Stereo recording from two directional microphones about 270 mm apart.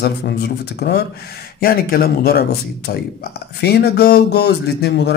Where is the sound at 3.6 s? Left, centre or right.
Left.